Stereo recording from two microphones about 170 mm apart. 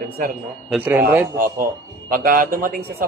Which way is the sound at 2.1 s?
55° right (ahead or behind).